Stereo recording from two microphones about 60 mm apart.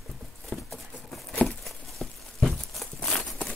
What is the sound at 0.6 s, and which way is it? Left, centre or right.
Patter, centre.